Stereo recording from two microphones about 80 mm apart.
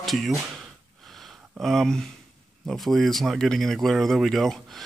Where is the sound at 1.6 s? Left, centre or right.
Centre.